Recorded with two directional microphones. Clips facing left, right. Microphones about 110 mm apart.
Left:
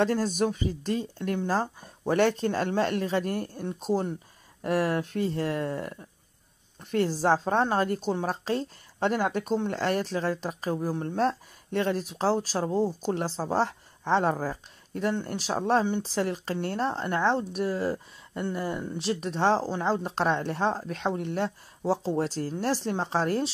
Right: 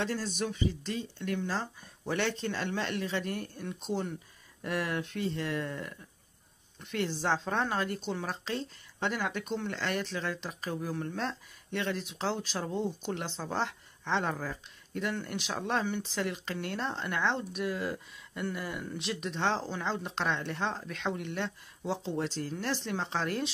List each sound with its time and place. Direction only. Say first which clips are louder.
0.0 s speech: left 8 dB; 45° left (ahead or behind)